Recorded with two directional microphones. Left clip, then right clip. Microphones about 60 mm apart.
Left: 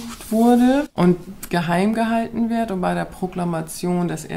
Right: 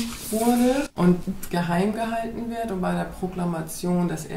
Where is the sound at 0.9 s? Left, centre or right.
Left.